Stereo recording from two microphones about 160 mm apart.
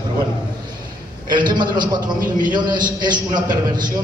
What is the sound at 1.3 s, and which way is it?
A man's voice, 30° right (ahead or behind).